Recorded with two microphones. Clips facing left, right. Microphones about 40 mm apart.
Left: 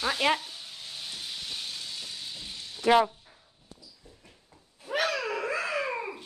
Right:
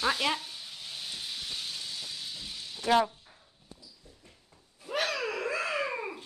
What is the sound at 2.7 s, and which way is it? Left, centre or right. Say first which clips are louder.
Speech: left 3 dB; centre.